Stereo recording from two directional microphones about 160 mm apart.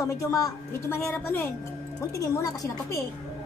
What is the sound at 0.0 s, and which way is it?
A woman's voice, 20° left (ahead or behind).